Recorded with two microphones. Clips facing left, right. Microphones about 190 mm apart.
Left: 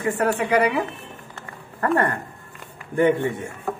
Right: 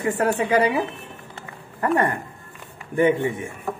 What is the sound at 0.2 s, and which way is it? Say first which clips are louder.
Speech: even; 20° right (ahead or behind).